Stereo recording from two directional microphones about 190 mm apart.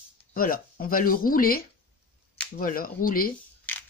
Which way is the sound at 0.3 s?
50° left (ahead or behind).